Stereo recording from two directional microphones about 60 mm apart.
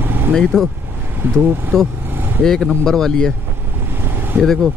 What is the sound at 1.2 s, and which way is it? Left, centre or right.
Speech, right.